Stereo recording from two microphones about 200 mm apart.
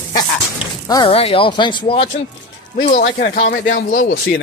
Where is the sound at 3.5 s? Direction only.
45° left (ahead or behind).